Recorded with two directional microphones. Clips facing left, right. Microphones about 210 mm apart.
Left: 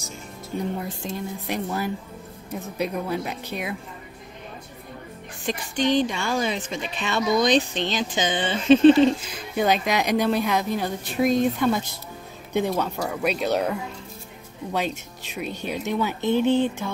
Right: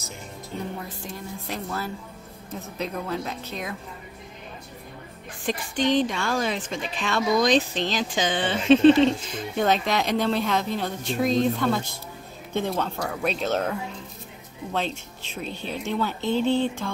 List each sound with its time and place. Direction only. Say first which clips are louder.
0.8 s speech: left 5 dB; 20° left (ahead or behind)
5.5 s a woman's voice: left 1 dB; centre (ahead or behind)
14.7 s speech: left 2 dB; 10° left (ahead or behind)